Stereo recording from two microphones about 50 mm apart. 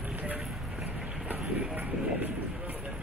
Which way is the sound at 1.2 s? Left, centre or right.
Right.